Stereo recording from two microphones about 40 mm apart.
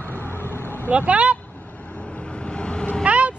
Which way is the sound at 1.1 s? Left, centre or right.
Right.